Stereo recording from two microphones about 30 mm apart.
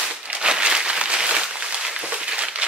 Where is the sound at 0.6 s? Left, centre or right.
Right.